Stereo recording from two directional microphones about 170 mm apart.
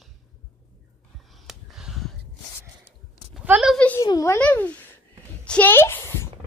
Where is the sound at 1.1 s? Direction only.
Centre (ahead or behind).